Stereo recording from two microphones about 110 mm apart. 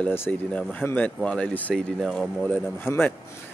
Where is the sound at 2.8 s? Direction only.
20° left (ahead or behind).